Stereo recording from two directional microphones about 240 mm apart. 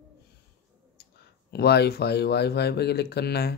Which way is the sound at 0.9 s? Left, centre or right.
Left.